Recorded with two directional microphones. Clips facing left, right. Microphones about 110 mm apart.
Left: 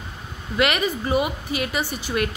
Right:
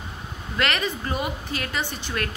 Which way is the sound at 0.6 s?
10° left (ahead or behind).